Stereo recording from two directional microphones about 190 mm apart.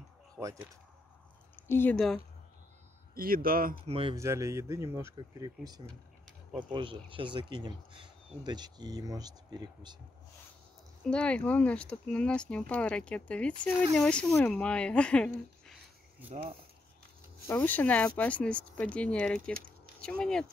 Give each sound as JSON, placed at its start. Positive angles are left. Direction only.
{"t": 0.4, "sound": "speech", "side_deg": -15}
{"t": 1.7, "sound": "speech", "side_deg": 10}
{"t": 3.2, "sound": "speech", "side_deg": -50}
{"t": 3.8, "sound": "speech", "side_deg": -30}
{"t": 4.2, "sound": "speech", "side_deg": -15}
{"t": 11.1, "sound": "speech", "side_deg": 5}
{"t": 17.5, "sound": "speech", "side_deg": 10}